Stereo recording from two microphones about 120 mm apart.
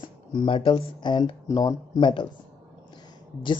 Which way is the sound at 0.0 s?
40° left (ahead or behind).